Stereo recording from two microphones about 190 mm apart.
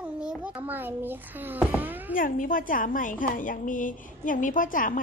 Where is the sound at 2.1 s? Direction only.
45° left (ahead or behind).